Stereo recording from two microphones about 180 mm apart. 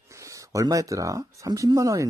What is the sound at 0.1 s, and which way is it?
Speech, 15° right (ahead or behind).